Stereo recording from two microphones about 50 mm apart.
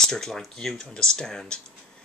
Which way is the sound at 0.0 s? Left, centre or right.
Centre.